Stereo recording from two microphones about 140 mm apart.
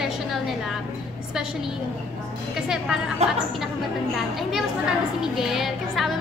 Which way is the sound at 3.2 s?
50° right (ahead or behind).